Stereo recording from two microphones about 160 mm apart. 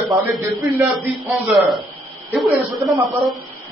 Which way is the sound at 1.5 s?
Centre (ahead or behind).